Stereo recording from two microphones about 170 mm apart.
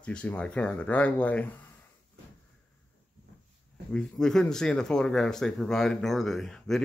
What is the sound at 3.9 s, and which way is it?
Speech, 5° left (ahead or behind).